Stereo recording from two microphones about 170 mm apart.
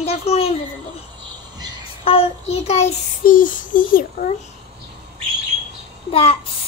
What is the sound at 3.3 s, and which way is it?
A child's voice, 55° left (ahead or behind).